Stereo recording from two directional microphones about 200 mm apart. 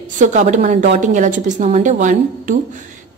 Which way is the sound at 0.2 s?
40° right (ahead or behind).